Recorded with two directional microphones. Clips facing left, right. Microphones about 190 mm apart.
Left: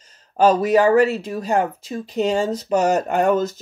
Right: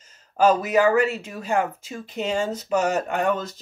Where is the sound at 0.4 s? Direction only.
35° left (ahead or behind).